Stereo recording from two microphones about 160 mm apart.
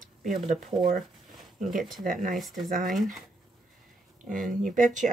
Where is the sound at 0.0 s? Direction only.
55° right (ahead or behind).